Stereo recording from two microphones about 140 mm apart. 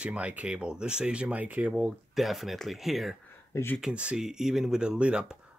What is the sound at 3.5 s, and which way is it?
Speech, 15° left (ahead or behind).